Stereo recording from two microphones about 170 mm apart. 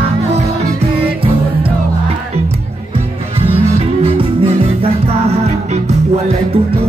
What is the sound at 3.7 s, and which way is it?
Music, 35° right (ahead or behind).